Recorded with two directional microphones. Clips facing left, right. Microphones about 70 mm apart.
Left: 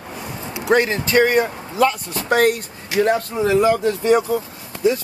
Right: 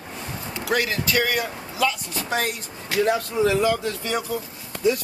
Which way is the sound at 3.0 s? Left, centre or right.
Left.